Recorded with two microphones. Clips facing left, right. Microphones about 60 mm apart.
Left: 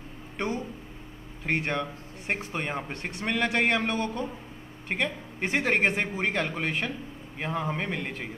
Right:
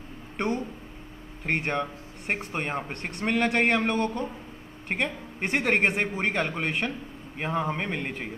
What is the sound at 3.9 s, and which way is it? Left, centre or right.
Speech, right.